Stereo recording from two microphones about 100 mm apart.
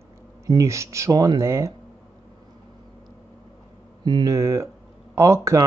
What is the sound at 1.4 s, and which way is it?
Speech, 30° right (ahead or behind).